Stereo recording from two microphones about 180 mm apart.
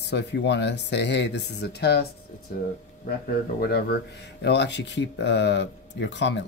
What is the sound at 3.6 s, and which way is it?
Speech, 60° left (ahead or behind).